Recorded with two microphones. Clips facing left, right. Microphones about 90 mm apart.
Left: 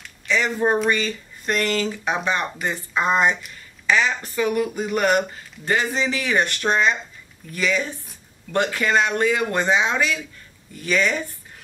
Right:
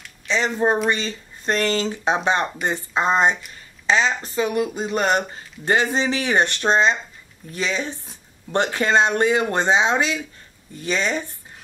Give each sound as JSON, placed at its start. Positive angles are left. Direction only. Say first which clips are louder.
{"t": 0.3, "sound": "speech", "louder": "even", "side_deg": -25}